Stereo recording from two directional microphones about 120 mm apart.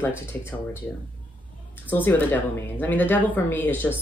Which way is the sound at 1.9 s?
15° left (ahead or behind).